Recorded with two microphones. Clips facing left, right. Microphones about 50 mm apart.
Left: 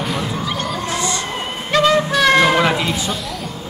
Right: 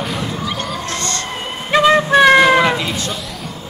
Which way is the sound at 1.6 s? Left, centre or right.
Right.